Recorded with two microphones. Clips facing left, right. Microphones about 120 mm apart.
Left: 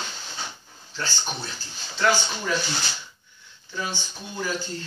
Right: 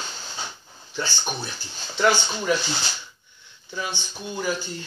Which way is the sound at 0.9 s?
15° right (ahead or behind).